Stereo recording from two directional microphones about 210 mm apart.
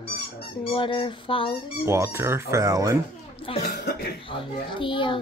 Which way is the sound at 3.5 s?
25° left (ahead or behind).